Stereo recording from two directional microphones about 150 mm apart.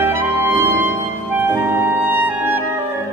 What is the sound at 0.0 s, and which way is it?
Music, 15° right (ahead or behind).